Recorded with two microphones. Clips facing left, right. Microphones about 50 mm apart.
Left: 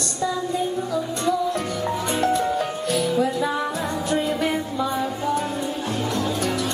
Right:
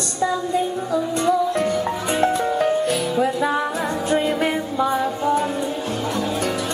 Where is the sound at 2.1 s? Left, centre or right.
Centre.